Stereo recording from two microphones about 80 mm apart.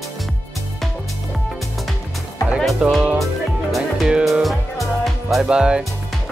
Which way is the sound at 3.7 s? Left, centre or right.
Centre.